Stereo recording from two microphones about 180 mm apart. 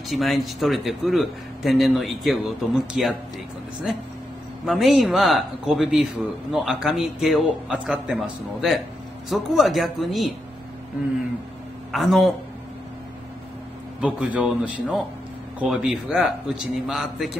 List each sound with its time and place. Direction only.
0.1 s speech: centre (ahead or behind)
4.6 s speech: centre (ahead or behind)
11.9 s speech: centre (ahead or behind)
14.0 s speech: 10° right (ahead or behind)